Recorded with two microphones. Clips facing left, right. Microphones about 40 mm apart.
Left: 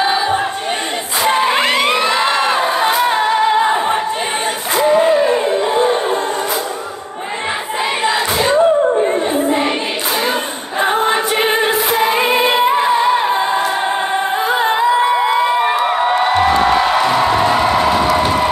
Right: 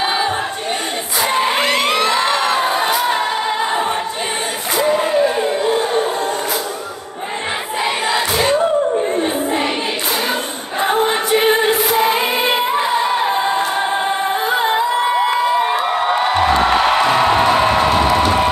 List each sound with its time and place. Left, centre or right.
0.0 s crowd: centre
1.5 s music: left
2.2 s crowd: centre
2.8 s music: centre
4.7 s music: left
5.7 s a sound: left
10.8 s music: left
12.3 s music: left
15.8 s music: centre
17.0 s music: centre